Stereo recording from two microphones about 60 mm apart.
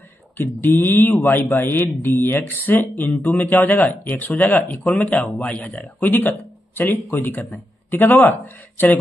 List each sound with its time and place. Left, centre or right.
0.4 s a man's voice: left